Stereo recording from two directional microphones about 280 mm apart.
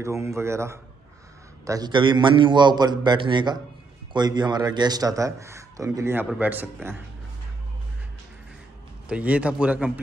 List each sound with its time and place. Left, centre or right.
0.0 s a man's voice: centre
9.1 s a man's voice: centre